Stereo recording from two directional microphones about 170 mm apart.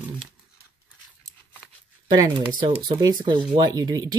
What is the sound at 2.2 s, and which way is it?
Speech, 25° right (ahead or behind).